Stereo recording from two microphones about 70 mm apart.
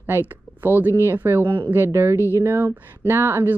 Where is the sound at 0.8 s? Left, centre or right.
Right.